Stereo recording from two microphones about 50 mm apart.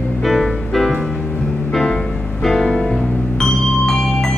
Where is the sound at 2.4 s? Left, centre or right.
Centre.